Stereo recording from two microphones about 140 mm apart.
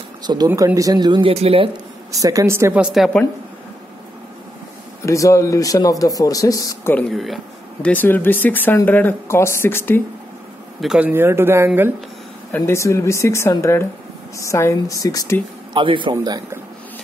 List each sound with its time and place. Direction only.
0.5 s speech: 20° right (ahead or behind)
1.3 s speech: 45° right (ahead or behind)
2.1 s speech: 25° right (ahead or behind); by 3.2 s centre (ahead or behind)
5.0 s speech: 20° left (ahead or behind)
7.1 s speech: centre (ahead or behind)
7.8 s speech: 10° left (ahead or behind)
10.8 s speech: 5° right (ahead or behind)
12.5 s speech: 20° left (ahead or behind)
15.7 s a man's voice: 35° right (ahead or behind)